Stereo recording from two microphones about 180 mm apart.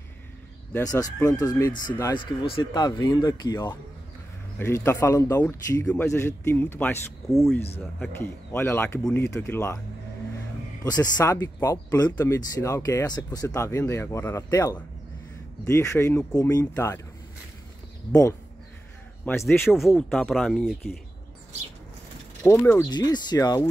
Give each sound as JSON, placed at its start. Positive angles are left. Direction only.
{"t": 0.7, "sound": "speech", "side_deg": 20}
{"t": 8.2, "sound": "speech", "side_deg": 15}
{"t": 10.8, "sound": "speech", "side_deg": 20}
{"t": 16.3, "sound": "speech", "side_deg": 20}
{"t": 19.2, "sound": "speech", "side_deg": 10}
{"t": 19.6, "sound": "speech", "side_deg": 0}
{"t": 22.4, "sound": "speech", "side_deg": 15}
{"t": 22.8, "sound": "speech", "side_deg": 25}